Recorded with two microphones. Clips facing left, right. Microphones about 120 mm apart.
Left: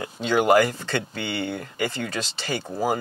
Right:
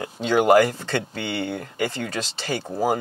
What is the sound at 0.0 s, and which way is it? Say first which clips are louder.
Speech: right 2 dB; 45° right (ahead or behind).